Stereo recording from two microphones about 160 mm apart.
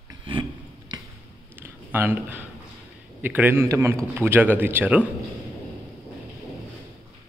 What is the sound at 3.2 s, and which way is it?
A man's voice, 10° right (ahead or behind).